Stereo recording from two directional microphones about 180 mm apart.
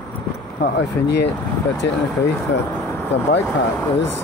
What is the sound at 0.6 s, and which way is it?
Speech, 70° left (ahead or behind).